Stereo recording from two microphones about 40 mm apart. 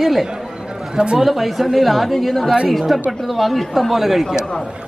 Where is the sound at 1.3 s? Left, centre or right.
Centre.